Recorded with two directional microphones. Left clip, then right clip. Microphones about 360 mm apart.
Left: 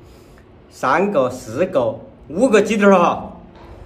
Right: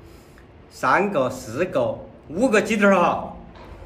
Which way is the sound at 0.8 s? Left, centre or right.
Centre.